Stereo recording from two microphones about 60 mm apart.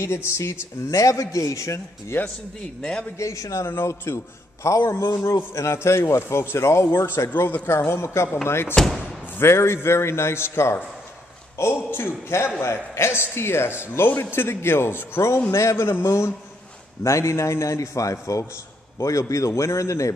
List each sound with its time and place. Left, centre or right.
0.0 s a man's voice: left
0.8 s a man's voice: left
2.8 s a man's voice: centre
3.2 s a man's voice: left
3.6 s a man's voice: left
4.6 s a man's voice: left
7.3 s a man's voice: left